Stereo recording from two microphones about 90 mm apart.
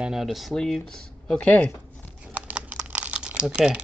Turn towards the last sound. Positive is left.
turn(degrees=-10)  # may be behind; listen again after turning